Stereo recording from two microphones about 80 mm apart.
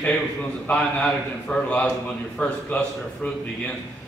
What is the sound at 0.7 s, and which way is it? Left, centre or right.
A man's voice, centre.